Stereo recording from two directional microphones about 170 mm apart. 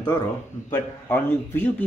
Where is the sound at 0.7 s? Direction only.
15° left (ahead or behind).